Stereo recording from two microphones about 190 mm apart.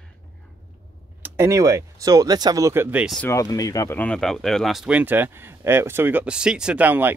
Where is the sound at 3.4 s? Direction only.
20° left (ahead or behind).